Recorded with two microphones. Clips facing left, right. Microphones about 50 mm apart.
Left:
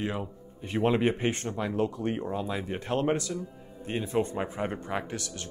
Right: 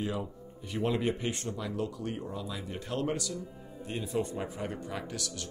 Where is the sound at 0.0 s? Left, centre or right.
Left.